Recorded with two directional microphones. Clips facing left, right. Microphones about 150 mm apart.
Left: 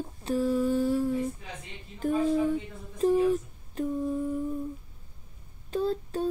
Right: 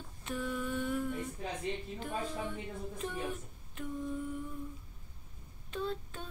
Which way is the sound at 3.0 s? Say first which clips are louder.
Left 18 dB; 35° left (ahead or behind).